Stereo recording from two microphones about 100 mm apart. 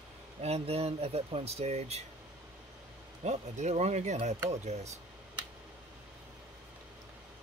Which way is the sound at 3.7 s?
90° right.